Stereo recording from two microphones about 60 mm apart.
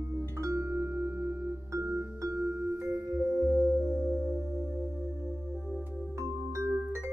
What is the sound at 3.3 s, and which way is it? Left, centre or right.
Music, right.